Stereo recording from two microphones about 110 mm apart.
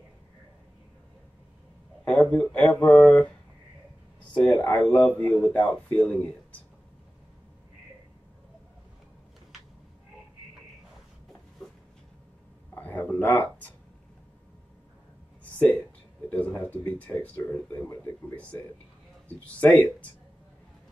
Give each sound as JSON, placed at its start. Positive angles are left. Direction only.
{"t": 2.0, "sound": "a man's voice", "side_deg": 10}
{"t": 12.7, "sound": "a sound", "side_deg": 15}
{"t": 16.3, "sound": "a man's voice", "side_deg": 10}